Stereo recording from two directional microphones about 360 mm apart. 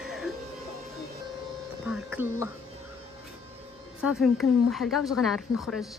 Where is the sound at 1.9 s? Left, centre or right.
Centre.